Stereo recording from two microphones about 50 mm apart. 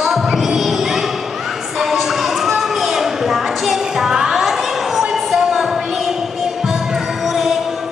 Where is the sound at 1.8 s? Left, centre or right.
Centre.